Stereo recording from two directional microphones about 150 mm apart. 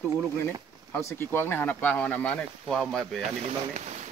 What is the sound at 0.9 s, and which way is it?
Speech, 20° left (ahead or behind).